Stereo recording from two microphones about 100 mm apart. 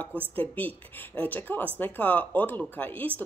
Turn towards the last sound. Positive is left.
turn(degrees=15)  # may be behind; listen again after turning